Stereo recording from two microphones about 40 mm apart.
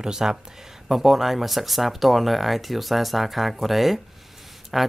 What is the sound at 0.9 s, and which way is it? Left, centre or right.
Speech, centre.